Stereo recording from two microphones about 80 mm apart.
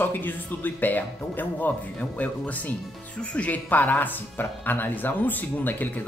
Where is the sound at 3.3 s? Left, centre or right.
Centre.